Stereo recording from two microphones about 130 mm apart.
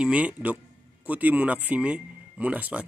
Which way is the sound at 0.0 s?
10° right (ahead or behind).